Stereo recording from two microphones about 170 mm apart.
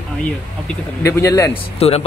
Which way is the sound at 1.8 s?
35° left (ahead or behind).